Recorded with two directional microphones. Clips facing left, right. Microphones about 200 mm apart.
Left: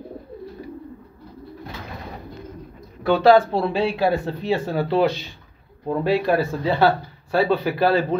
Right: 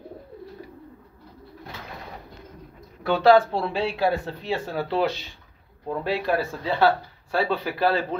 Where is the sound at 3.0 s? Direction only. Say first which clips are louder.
Left 3 dB; centre (ahead or behind).